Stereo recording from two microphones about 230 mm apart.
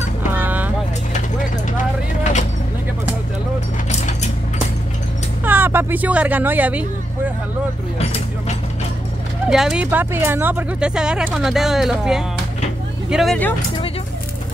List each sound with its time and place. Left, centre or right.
0.3 s vehicle: centre
3.9 s mechanisms: left
5.4 s speech: centre
9.5 s speech: centre